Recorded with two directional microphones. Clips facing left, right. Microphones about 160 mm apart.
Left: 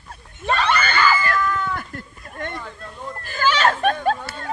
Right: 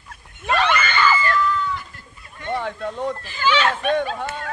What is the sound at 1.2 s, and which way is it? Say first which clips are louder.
Chicken: right 1 dB; 45° left (ahead or behind).